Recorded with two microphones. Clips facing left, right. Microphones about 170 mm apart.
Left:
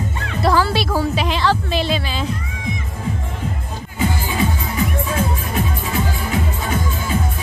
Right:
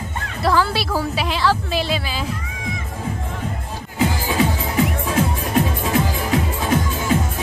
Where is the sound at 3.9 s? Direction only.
90° right.